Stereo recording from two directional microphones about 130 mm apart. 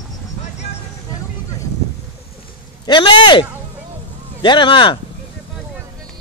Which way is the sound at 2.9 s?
35° left (ahead or behind).